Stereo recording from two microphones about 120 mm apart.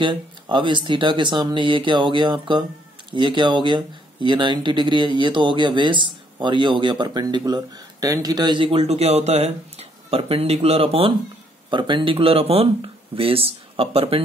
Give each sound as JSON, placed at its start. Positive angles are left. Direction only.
{"t": 0.0, "sound": "speech", "side_deg": -40}